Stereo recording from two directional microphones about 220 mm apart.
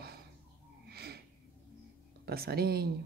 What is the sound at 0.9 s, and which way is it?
Snort, 45° right (ahead or behind).